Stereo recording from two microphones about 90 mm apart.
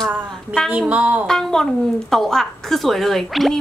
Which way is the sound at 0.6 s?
15° right (ahead or behind).